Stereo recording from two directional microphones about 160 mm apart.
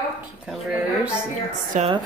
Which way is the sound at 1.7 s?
50° right (ahead or behind).